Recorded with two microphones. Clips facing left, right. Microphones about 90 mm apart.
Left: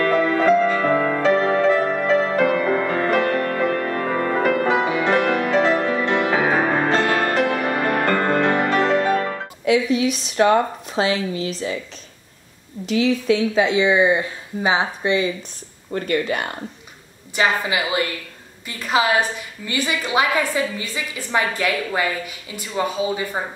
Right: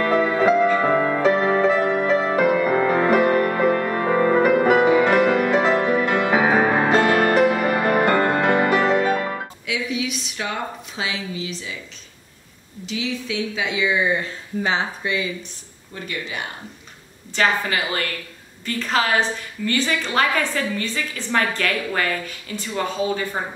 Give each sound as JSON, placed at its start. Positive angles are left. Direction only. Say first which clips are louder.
{"t": 0.0, "sound": "music", "louder": "left 1 dB", "side_deg": -15}
{"t": 9.7, "sound": "speech", "louder": "left 9 dB", "side_deg": 45}
{"t": 12.8, "sound": "a woman's voice", "louder": "left 9 dB", "side_deg": 50}
{"t": 13.6, "sound": "speech", "louder": "left 4 dB", "side_deg": 30}
{"t": 15.9, "sound": "a woman's voice", "louder": "left 9 dB", "side_deg": 50}
{"t": 17.3, "sound": "a woman's voice", "louder": "left 1 dB", "side_deg": 15}